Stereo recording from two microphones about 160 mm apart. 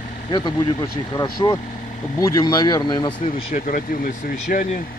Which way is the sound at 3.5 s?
55° left (ahead or behind).